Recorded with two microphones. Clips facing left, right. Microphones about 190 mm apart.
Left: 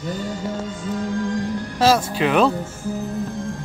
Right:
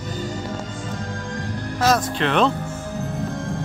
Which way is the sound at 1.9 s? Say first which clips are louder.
Left 2 dB; 5° left (ahead or behind).